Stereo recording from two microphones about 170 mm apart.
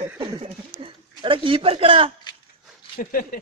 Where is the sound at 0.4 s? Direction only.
35° right (ahead or behind).